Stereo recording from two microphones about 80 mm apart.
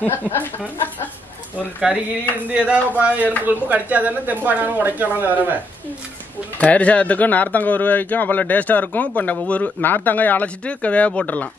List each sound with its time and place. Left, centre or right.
0.0 s speech: left
2.4 s a sound: centre
3.4 s a woman's voice: centre
6.6 s speech: centre